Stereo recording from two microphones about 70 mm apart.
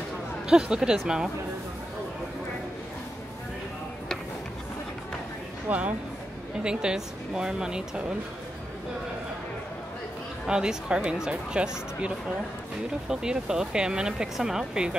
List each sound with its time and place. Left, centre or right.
0.5 s speech: centre
5.7 s speech: right
10.4 s speech: centre
13.1 s speech: centre